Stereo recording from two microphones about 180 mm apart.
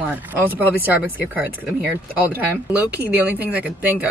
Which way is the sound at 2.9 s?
10° right (ahead or behind).